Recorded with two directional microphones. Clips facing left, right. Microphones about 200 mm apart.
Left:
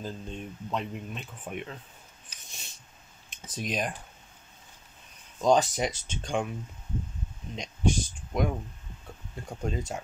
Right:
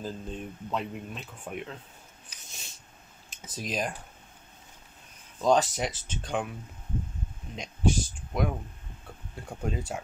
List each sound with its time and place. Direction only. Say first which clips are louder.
0.0 s speech: right 1 dB; 5° right (ahead or behind)
2.2 s a sound: even; centre (ahead or behind)
3.3 s speech: left 2 dB; centre (ahead or behind)
5.4 s speech: left 1 dB; centre (ahead or behind)
7.5 s speech: right 1 dB; 5° right (ahead or behind)